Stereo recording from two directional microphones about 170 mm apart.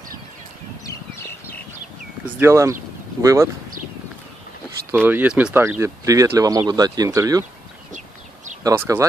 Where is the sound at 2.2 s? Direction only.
15° right (ahead or behind).